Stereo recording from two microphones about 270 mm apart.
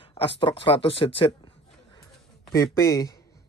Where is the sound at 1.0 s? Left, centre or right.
Centre.